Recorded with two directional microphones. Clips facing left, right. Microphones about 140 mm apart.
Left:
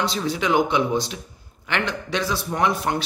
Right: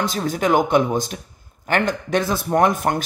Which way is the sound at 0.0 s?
45° right (ahead or behind).